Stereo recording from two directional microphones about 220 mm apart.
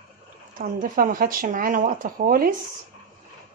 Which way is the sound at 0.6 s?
40° right (ahead or behind).